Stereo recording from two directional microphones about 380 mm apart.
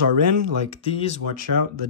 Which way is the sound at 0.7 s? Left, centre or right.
Centre.